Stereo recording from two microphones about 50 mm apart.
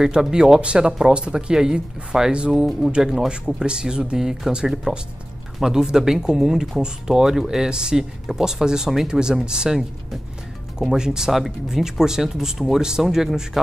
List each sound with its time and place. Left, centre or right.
0.0 s speech: centre
10.8 s speech: centre